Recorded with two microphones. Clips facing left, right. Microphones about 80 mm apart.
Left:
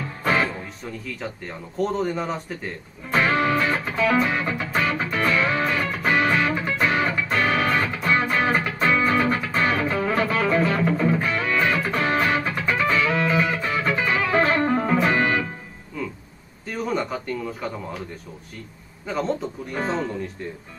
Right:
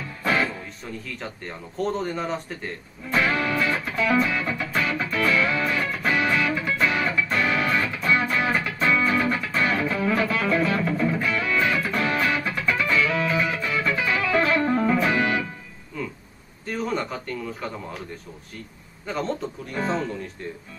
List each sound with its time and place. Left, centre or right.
0.2 s music: left
1.8 s speech: centre
3.1 s music: left
16.6 s a sound: centre
17.0 s speech: centre
19.0 s speech: centre